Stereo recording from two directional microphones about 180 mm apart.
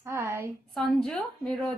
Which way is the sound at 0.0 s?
15° right (ahead or behind).